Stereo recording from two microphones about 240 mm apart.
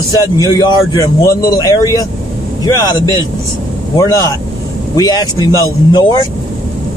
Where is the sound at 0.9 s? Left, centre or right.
Centre.